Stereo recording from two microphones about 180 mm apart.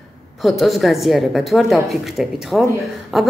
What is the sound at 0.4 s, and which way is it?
A woman's voice, centre (ahead or behind).